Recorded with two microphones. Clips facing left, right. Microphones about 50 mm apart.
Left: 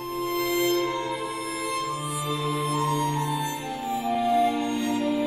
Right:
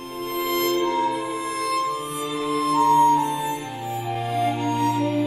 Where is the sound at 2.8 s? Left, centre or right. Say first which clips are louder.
Right 9 dB; right.